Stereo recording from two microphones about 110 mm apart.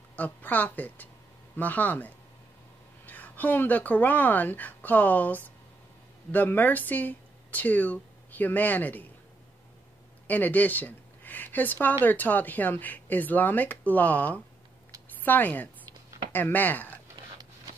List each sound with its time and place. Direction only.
0.1 s speech: 15° left (ahead or behind)
10.2 s speech: 15° left (ahead or behind)